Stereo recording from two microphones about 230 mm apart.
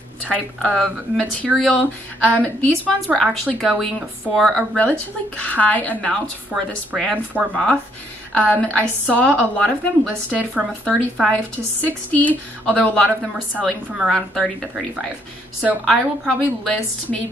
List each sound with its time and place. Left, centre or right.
0.2 s a woman's voice: centre